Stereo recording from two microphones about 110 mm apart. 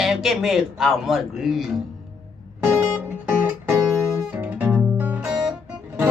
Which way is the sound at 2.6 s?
15° right (ahead or behind).